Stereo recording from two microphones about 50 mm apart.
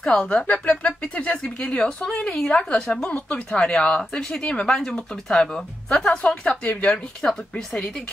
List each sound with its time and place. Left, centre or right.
0.0 s speech: centre
0.3 s speech: left; by 6.1 s centre
6.1 s speech: left
6.9 s speech: centre